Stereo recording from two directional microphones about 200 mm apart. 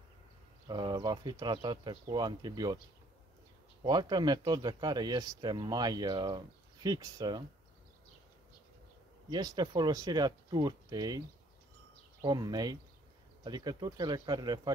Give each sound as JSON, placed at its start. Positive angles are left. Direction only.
{"t": 0.7, "sound": "speech", "side_deg": -20}
{"t": 3.8, "sound": "speech", "side_deg": -20}
{"t": 9.3, "sound": "speech", "side_deg": -20}